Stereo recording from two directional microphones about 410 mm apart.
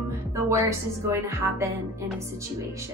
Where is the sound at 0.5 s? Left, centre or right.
Centre.